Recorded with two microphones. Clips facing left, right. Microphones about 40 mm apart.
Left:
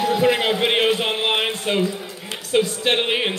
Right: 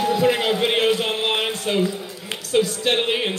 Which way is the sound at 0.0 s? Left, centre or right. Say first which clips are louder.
Left 1 dB; centre.